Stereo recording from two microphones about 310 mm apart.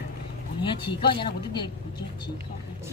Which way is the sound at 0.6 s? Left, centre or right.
Centre.